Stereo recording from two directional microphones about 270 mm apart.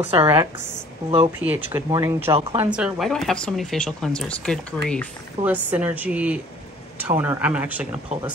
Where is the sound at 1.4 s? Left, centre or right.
Centre.